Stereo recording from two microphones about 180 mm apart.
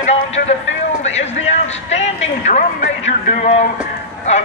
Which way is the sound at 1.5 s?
35° left (ahead or behind).